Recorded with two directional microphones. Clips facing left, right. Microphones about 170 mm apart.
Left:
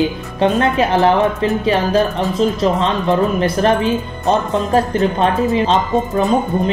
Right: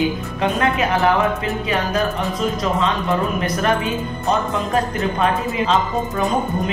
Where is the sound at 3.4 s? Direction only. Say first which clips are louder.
Left 5 dB; 30° left (ahead or behind).